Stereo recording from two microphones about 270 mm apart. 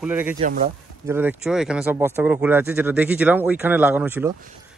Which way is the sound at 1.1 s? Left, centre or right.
Centre.